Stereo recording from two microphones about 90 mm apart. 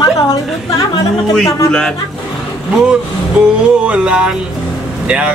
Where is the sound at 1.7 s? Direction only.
10° left (ahead or behind).